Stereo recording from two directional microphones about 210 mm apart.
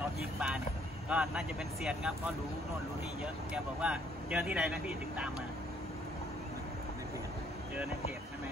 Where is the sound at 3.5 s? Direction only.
5° right (ahead or behind).